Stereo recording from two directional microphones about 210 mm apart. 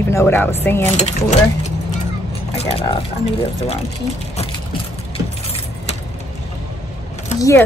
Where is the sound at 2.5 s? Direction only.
30° left (ahead or behind).